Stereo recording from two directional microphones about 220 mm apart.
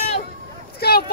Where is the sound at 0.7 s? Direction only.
45° left (ahead or behind).